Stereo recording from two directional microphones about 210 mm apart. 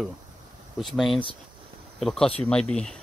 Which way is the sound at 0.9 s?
Centre (ahead or behind).